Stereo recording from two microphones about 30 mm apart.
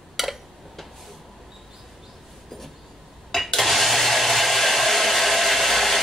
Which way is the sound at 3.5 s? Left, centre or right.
Centre.